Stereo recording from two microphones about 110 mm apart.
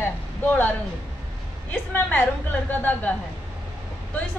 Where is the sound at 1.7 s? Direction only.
15° left (ahead or behind).